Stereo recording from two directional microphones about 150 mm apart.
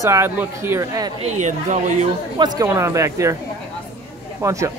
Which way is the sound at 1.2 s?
55° right (ahead or behind).